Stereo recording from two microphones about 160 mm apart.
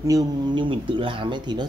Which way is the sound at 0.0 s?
20° right (ahead or behind).